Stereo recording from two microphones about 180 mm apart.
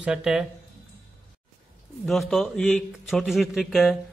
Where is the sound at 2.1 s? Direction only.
Centre (ahead or behind).